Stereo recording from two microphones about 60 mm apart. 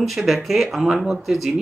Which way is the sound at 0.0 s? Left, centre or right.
Centre.